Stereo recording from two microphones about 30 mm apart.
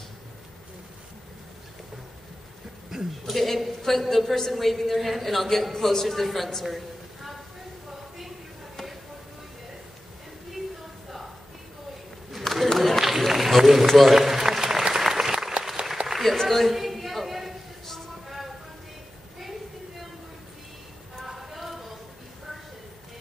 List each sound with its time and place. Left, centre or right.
2.9 s a man's voice: centre
3.3 s a woman's voice: centre
12.3 s a sound: centre
13.0 s run: centre
13.5 s a man's voice: centre
13.9 s applause: centre
16.2 s a sound: centre
21.3 s clip-clop: centre